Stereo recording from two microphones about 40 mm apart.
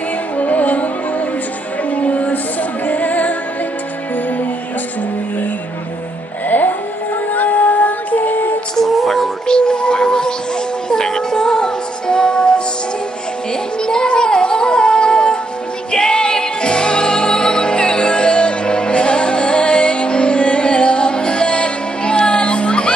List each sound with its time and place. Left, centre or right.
0.4 s music: left
1.9 s music: left
7.3 s music: left
8.7 s music: centre
9.5 s music: left
13.8 s music: left